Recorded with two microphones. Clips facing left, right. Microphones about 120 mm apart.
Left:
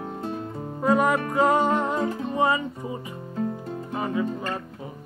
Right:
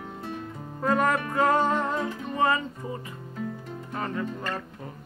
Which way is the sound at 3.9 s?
10° left (ahead or behind).